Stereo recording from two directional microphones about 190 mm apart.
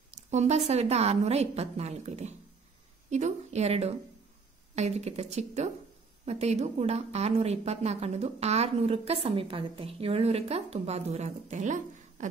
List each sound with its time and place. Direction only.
0.3 s a woman's voice: 35° right (ahead or behind)